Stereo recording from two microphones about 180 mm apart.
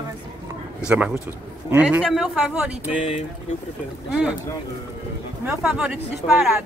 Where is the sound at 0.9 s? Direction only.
5° right (ahead or behind).